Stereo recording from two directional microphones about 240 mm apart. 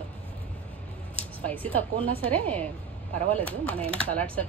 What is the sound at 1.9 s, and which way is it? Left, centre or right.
Speech, right.